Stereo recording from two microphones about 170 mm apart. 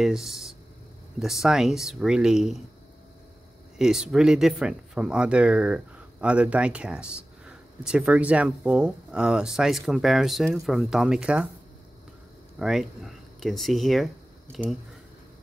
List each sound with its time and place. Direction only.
0.0 s speech: centre (ahead or behind)
3.7 s speech: 5° right (ahead or behind)
12.5 s speech: centre (ahead or behind)